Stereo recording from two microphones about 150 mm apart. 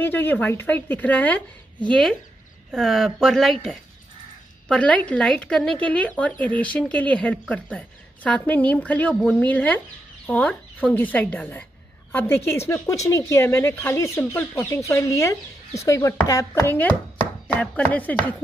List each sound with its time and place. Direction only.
0.0 s speech: 10° left (ahead or behind)
4.6 s speech: 5° left (ahead or behind)
17.6 s speech: 10° left (ahead or behind)